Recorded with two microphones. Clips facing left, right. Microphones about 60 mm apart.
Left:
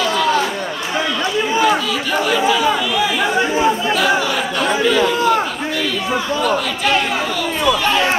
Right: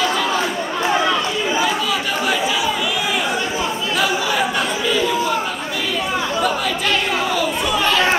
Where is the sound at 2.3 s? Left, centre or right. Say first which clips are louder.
Left 4 dB; centre.